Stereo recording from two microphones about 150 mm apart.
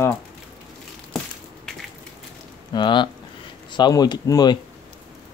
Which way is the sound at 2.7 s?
30° left (ahead or behind).